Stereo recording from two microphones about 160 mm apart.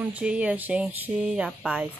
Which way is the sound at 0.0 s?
10° right (ahead or behind).